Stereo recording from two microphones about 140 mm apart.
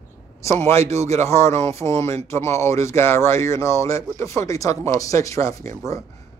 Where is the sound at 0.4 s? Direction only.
20° left (ahead or behind).